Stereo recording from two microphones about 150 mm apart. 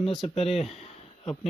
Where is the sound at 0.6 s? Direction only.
45° left (ahead or behind).